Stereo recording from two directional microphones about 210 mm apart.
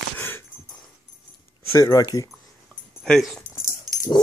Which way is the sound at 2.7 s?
5° left (ahead or behind).